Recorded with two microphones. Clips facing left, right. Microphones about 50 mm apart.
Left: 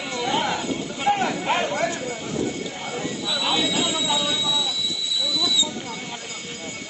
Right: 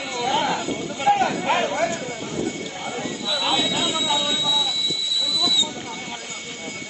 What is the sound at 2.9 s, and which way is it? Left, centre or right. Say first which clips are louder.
Train: right 1 dB; centre.